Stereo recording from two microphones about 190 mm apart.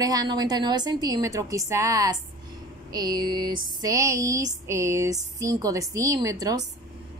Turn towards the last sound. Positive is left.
turn(degrees=-20)  # may be behind; listen again after turning